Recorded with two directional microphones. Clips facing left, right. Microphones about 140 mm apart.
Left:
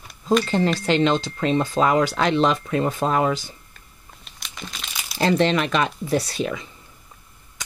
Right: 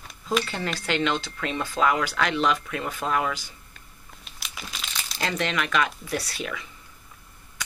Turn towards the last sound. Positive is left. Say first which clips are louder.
# left 7 dB
turn(degrees=30)  # may be behind; listen again after turning